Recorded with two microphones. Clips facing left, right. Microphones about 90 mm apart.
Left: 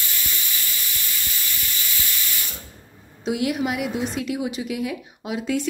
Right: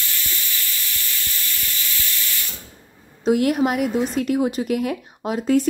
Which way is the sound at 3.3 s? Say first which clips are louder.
Right 5 dB; 45° right (ahead or behind).